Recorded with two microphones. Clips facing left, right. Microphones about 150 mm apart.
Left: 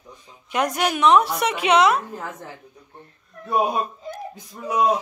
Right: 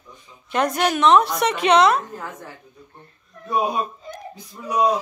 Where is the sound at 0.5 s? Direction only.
10° left (ahead or behind).